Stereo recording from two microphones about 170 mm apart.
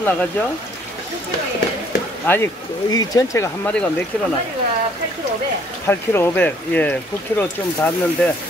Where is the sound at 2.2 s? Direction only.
10° left (ahead or behind).